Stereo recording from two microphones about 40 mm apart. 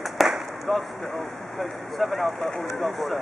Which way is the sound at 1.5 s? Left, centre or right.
Centre.